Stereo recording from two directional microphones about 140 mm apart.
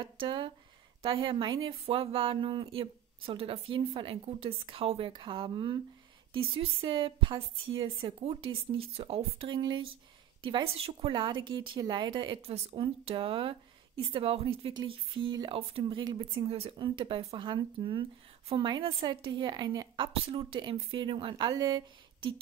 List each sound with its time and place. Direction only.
0.0 s a woman's voice: 35° right (ahead or behind)
16.4 s a woman's voice: 45° right (ahead or behind)
20.1 s a woman's voice: 40° right (ahead or behind)